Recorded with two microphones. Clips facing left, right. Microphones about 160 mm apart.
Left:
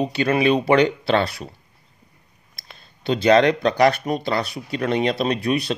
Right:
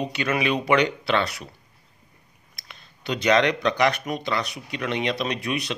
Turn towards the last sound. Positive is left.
turn(degrees=35)  # may be behind; listen again after turning